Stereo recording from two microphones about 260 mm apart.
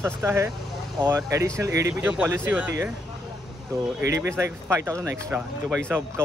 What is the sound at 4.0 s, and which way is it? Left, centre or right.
Speech, centre.